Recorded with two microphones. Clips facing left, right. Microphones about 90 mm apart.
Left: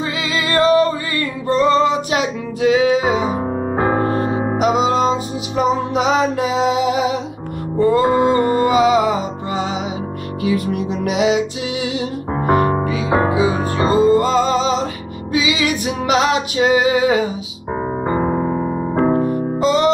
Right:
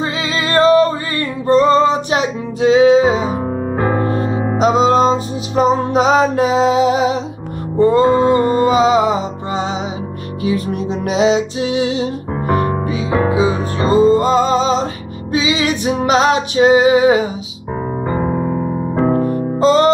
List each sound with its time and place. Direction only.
0.0 s music: 30° right (ahead or behind)
3.7 s music: 25° left (ahead or behind)
4.6 s music: 35° right (ahead or behind)
8.0 s music: 20° left (ahead or behind)
8.3 s music: 25° right (ahead or behind)
12.4 s music: 30° left (ahead or behind)
12.8 s music: 25° right (ahead or behind)
18.0 s piano: 20° left (ahead or behind)
19.3 s music: 40° right (ahead or behind)